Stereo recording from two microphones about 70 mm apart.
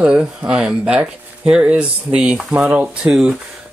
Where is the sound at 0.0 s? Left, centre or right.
Centre.